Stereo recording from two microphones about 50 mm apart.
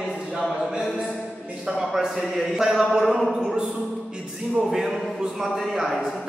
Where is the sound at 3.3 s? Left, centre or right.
Centre.